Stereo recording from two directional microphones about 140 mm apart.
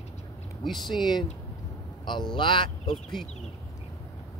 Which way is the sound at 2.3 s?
35° left (ahead or behind).